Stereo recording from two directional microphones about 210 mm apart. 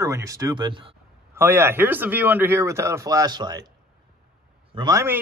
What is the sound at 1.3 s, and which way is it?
Speech, 10° right (ahead or behind).